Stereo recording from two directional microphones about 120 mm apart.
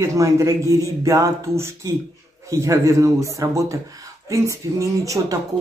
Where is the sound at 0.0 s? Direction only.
25° right (ahead or behind).